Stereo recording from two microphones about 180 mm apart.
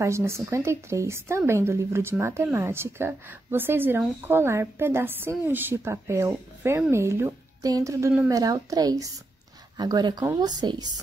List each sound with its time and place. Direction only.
0.0 s a woman's voice: 15° right (ahead or behind)